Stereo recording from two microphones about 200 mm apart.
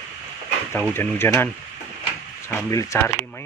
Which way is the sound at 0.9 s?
10° left (ahead or behind).